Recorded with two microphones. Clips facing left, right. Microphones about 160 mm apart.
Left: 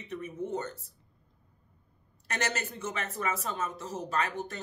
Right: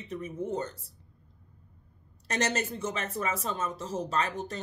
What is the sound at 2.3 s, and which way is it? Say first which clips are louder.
A woman's voice: right 4 dB; 35° right (ahead or behind).